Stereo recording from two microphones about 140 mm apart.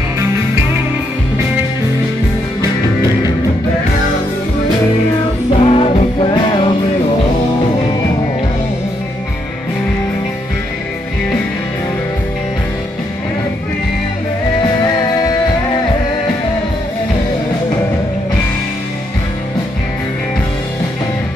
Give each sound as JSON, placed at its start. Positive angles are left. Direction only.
{"t": 5.5, "sound": "music", "side_deg": 45}